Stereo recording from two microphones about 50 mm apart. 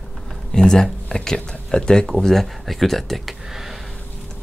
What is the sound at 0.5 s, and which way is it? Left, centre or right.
Speech, centre.